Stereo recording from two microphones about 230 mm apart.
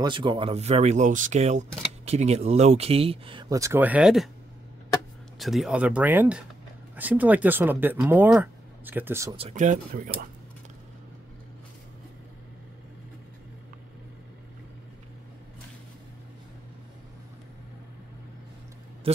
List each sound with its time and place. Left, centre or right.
0.0 s speech: centre
5.4 s speech: centre
9.4 s speech: right
19.1 s speech: right